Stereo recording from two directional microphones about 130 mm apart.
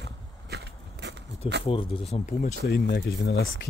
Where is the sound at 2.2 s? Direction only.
80° left.